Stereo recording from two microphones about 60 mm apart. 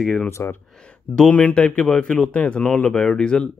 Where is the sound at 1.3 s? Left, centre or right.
Left.